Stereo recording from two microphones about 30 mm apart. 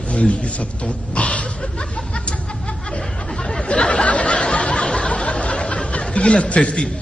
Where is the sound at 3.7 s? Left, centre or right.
Left.